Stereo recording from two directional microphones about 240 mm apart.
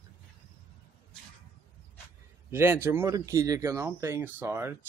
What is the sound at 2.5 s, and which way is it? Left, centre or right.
Speech, centre.